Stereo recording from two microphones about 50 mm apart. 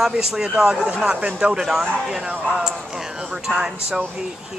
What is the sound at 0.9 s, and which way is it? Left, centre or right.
A woman's voice, right.